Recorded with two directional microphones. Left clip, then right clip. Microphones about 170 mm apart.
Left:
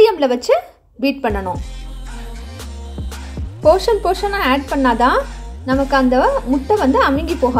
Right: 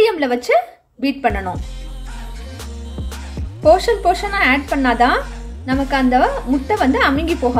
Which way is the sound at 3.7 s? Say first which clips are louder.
Even; 30° left (ahead or behind).